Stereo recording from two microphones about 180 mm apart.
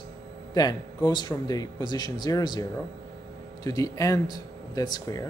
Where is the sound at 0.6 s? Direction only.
20° left (ahead or behind).